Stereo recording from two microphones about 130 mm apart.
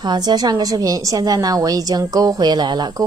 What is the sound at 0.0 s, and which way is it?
A woman's voice, 35° right (ahead or behind).